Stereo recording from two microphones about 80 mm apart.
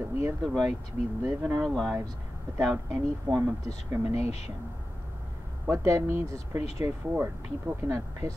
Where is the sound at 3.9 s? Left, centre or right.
Right.